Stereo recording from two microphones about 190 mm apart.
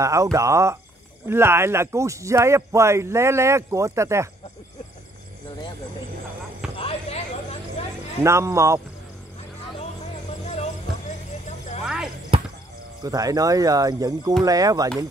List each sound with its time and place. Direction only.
0.0 s speech: 15° right (ahead or behind)
6.8 s a sound: 30° left (ahead or behind)
8.2 s speech: 15° right (ahead or behind)
10.4 s music: 35° left (ahead or behind)
11.8 s basketball bounce: 5° right (ahead or behind)
12.3 s basketball bounce: 30° right (ahead or behind)
13.0 s speech: 20° right (ahead or behind)